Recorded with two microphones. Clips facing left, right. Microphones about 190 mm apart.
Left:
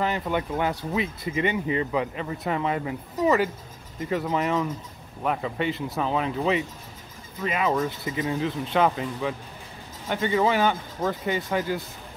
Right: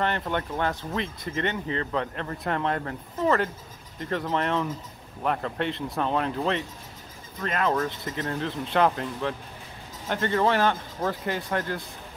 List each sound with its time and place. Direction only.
0.0 s speech: 5° left (ahead or behind)